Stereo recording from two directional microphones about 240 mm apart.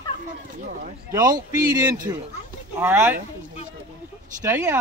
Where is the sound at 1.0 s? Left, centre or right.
Centre.